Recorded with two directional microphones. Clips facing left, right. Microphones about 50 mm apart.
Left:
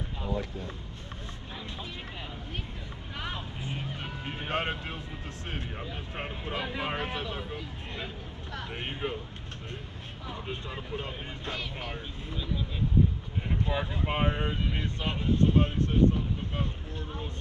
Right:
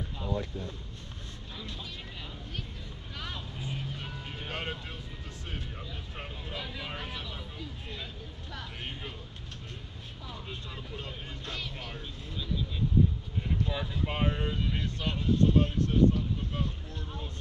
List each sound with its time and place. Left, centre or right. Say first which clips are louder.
3.2 s vehicle: left 3 dB; left
5.5 s speech: left 4 dB; left
10.2 s speech: left 5 dB; left
13.5 s speech: left 3 dB; left